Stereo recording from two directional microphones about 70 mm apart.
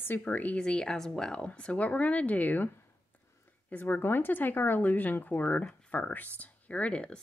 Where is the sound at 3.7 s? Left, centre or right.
Left.